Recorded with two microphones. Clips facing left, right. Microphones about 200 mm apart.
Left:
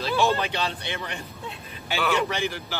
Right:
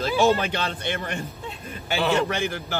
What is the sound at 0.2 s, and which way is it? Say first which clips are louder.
A man's voice: right 4 dB; 50° right (ahead or behind).